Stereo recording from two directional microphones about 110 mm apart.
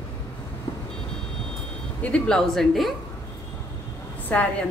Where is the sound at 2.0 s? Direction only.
10° left (ahead or behind).